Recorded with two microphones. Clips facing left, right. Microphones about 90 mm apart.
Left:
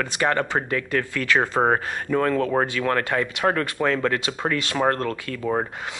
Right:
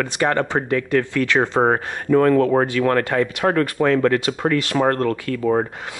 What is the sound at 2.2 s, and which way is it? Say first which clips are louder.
Speech: right 7 dB; 55° right (ahead or behind).